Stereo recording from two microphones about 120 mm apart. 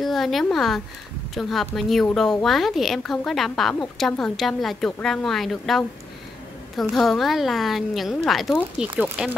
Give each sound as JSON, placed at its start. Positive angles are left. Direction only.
{"t": 0.0, "sound": "a woman's voice", "side_deg": 0}
{"t": 8.7, "sound": "speech", "side_deg": -15}